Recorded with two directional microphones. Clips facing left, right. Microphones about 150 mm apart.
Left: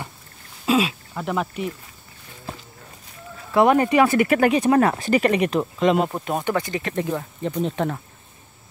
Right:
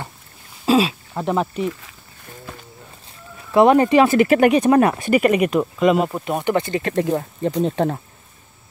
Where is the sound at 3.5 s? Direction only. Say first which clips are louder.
Right 4 dB; 25° right (ahead or behind).